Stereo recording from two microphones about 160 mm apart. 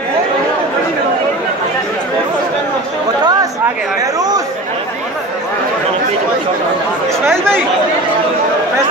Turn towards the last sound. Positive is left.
turn(degrees=-15)  # may be behind; listen again after turning